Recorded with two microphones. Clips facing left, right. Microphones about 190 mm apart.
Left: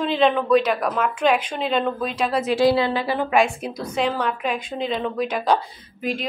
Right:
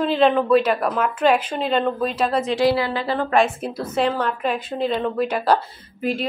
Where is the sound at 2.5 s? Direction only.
15° left (ahead or behind).